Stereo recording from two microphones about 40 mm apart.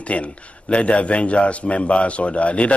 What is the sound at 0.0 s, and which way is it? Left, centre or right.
Speech, left.